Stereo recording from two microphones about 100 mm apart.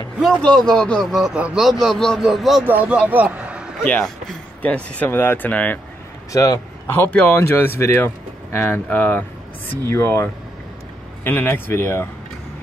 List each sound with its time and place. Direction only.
0.2 s speech: 5° left (ahead or behind)
1.2 s speech: 10° right (ahead or behind)
2.6 s a man's voice: 15° right (ahead or behind)
4.6 s speech: 15° left (ahead or behind)
6.3 s a man's voice: 35° left (ahead or behind)
7.1 s speech: 15° left (ahead or behind)